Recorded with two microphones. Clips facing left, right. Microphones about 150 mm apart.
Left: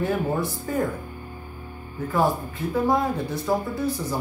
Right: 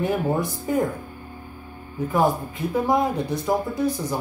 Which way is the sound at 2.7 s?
15° right (ahead or behind).